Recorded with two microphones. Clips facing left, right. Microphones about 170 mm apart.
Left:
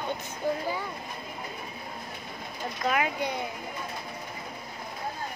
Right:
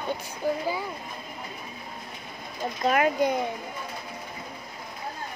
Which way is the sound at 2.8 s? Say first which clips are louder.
Right 6 dB; 50° right (ahead or behind).